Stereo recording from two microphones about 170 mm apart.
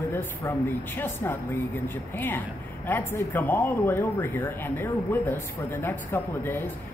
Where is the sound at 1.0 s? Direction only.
10° left (ahead or behind).